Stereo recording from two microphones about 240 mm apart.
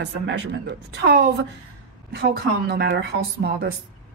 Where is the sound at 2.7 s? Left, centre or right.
Right.